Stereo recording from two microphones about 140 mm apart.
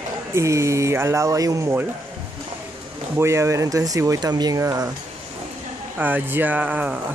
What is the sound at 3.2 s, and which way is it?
Speech, 20° right (ahead or behind).